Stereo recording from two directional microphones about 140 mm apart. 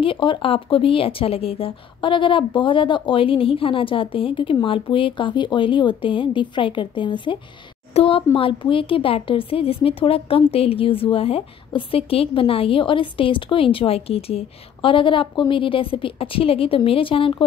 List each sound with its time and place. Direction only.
0.0 s a woman's voice: 35° left (ahead or behind)